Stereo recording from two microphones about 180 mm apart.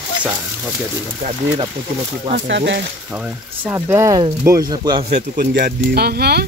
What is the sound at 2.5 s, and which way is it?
Speech, 75° right (ahead or behind).